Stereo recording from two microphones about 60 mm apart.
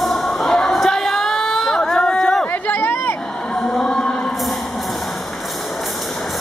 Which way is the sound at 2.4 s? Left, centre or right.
Left.